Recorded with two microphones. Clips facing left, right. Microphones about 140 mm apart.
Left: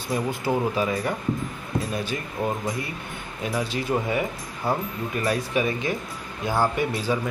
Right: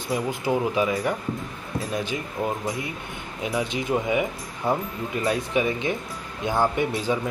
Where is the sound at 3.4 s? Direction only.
20° right (ahead or behind).